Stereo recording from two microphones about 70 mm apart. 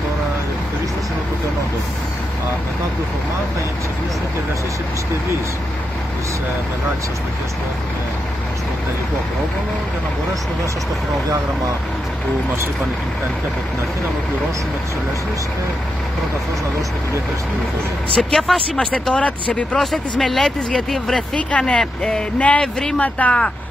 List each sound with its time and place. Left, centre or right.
18.1 s speech: centre
19.8 s speech: centre
21.4 s speech: centre